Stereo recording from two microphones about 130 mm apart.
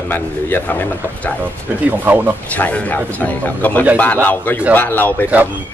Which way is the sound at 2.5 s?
10° left (ahead or behind).